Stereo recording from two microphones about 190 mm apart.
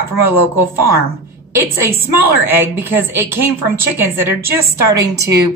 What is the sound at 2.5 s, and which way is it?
A woman's voice, 10° right (ahead or behind).